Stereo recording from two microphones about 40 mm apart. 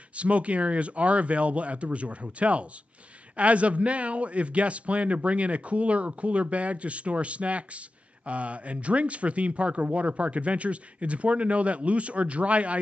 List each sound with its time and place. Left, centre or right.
0.1 s a man's voice: right